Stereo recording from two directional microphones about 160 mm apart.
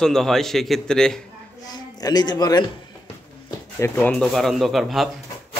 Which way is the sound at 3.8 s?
10° left (ahead or behind).